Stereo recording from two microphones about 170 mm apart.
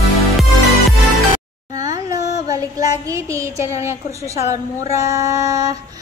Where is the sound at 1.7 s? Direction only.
20° right (ahead or behind).